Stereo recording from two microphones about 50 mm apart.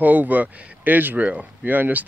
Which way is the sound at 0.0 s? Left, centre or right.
Right.